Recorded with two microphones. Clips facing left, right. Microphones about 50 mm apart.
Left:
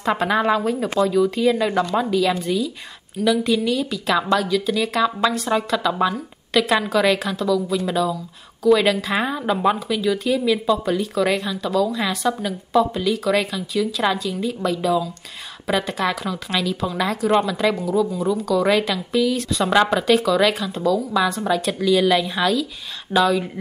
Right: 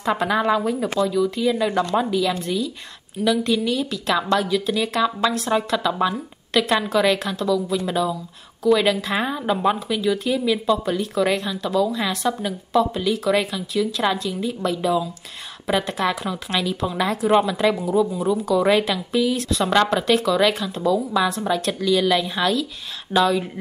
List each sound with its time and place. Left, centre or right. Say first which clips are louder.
0.0 s speech: left 1 dB; centre
2.0 s a woman's voice: left 1 dB; centre